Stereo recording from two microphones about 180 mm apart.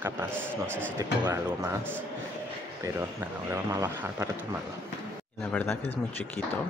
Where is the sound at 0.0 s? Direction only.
10° right (ahead or behind).